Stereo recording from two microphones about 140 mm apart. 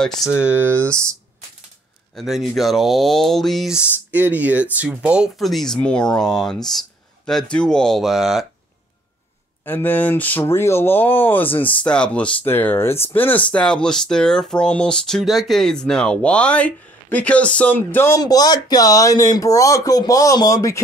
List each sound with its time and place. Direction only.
0.0 s speech: 5° left (ahead or behind)
0.3 s speech: 10° right (ahead or behind)
2.1 s speech: centre (ahead or behind)
9.7 s speech: 15° left (ahead or behind)
18.2 s speech: 30° left (ahead or behind)